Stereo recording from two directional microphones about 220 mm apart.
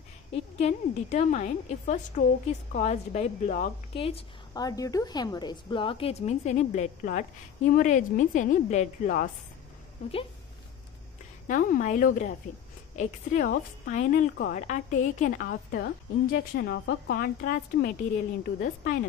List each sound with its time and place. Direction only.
0.3 s a woman's voice: 30° left (ahead or behind)
11.4 s a woman's voice: 35° left (ahead or behind)